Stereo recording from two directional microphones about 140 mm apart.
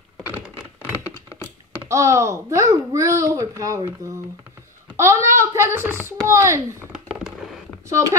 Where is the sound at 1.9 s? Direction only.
20° right (ahead or behind).